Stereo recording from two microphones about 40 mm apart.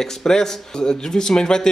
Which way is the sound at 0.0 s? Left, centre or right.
Centre.